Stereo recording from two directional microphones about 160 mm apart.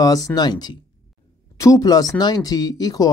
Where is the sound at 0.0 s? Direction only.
25° left (ahead or behind).